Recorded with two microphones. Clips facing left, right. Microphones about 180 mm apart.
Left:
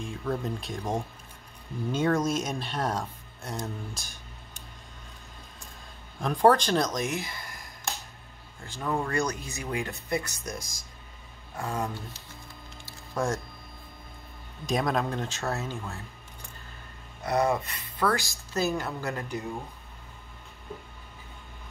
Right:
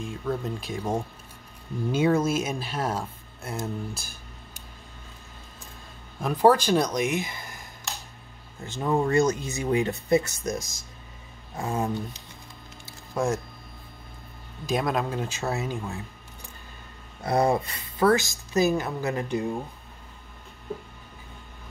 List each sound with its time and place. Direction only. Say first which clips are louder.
0.0 s speech: right 1 dB; centre (ahead or behind)
6.2 s speech: right 2 dB; 5° right (ahead or behind)
8.6 s speech: right 6 dB; 20° right (ahead or behind)
14.7 s speech: right 1 dB; centre (ahead or behind)
17.2 s speech: right 3 dB; 30° right (ahead or behind)